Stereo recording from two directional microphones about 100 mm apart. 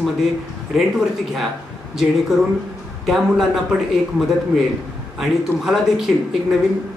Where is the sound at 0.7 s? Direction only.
Centre (ahead or behind).